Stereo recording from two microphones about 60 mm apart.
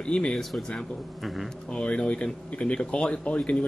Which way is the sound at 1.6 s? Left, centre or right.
Centre.